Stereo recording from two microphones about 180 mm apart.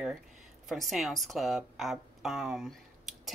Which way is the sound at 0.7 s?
Centre (ahead or behind).